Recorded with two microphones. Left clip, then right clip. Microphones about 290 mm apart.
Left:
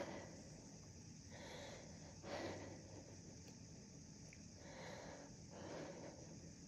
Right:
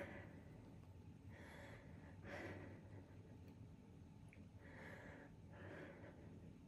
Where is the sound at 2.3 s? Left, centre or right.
Left.